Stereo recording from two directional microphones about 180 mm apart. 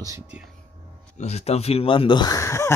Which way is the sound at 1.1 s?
35° left (ahead or behind).